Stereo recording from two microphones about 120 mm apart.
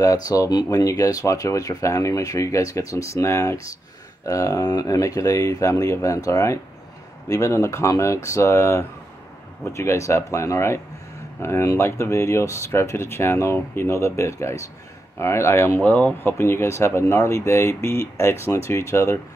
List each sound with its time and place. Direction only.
0.0 s speech: 30° left (ahead or behind)